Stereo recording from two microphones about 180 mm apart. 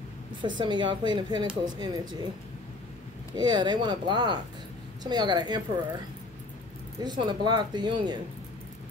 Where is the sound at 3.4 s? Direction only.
25° right (ahead or behind).